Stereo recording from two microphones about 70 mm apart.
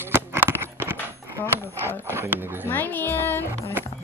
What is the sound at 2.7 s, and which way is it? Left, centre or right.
Speech, left.